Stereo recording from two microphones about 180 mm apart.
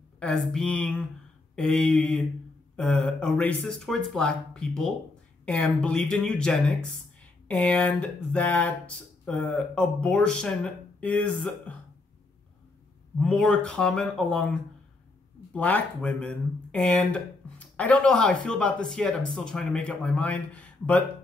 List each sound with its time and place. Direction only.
0.2 s speech: 5° left (ahead or behind)
13.2 s speech: 5° left (ahead or behind)